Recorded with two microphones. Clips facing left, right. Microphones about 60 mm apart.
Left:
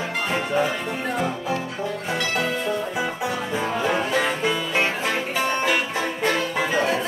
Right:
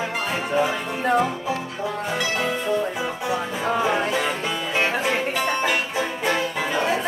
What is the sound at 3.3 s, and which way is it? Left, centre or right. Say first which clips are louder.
Music: right 2 dB; centre.